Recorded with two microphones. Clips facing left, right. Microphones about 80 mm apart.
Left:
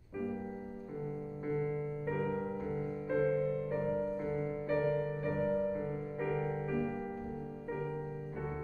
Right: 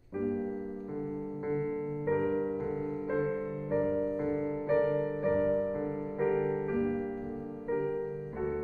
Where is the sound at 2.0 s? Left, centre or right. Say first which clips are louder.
Right 7 dB; right.